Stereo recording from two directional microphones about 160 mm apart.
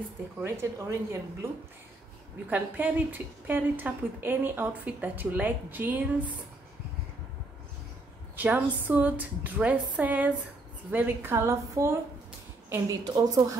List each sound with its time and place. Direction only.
0.4 s a woman's voice: 15° right (ahead or behind)
8.4 s a woman's voice: 10° right (ahead or behind)